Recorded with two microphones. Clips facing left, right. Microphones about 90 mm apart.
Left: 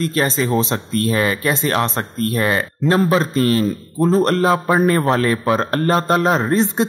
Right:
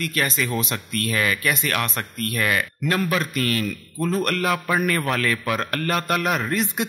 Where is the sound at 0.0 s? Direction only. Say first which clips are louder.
Left 6 dB; 30° left (ahead or behind).